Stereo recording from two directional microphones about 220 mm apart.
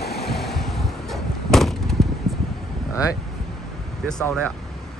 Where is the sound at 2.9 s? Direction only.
15° left (ahead or behind).